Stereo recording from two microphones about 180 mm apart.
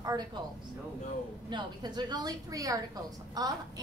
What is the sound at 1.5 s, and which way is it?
A woman's voice, 25° right (ahead or behind).